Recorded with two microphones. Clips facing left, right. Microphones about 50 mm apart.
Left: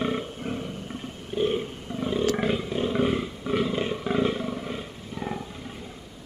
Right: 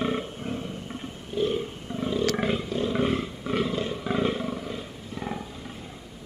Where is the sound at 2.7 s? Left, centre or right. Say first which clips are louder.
Even; centre.